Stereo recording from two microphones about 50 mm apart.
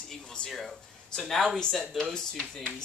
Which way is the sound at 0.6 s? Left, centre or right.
Centre.